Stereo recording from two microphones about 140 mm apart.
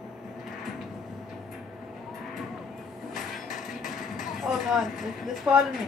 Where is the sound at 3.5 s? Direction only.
65° left (ahead or behind).